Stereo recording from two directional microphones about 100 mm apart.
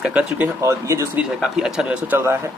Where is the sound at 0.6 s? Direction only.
30° right (ahead or behind).